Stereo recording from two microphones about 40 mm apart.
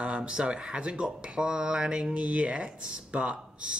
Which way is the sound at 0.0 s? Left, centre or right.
Right.